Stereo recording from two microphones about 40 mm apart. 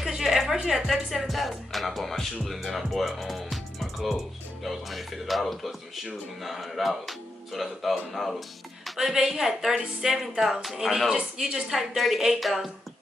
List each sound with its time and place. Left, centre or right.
0.1 s music: centre
0.7 s speech: centre
11.1 s a woman's voice: centre
11.7 s speech: centre